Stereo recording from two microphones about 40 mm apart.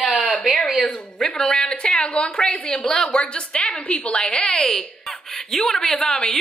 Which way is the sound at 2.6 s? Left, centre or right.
Centre.